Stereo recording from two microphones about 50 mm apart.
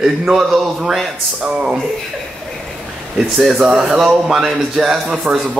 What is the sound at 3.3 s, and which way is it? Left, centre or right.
Speech, centre.